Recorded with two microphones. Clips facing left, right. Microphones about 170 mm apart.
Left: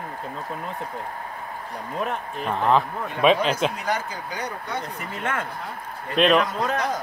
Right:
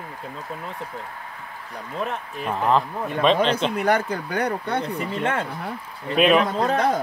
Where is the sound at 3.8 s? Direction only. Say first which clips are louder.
Right 6 dB; 60° right (ahead or behind).